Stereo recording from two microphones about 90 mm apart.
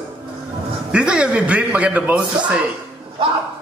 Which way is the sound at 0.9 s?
10° right (ahead or behind).